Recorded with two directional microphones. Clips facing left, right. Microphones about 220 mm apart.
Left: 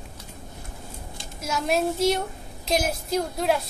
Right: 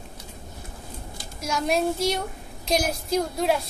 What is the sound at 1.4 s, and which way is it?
A woman's voice, centre (ahead or behind).